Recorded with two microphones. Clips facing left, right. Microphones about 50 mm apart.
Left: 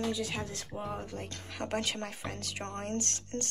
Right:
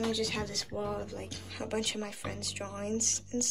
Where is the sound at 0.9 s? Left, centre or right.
Left.